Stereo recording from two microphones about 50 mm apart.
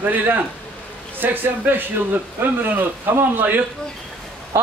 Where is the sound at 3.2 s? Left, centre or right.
Right.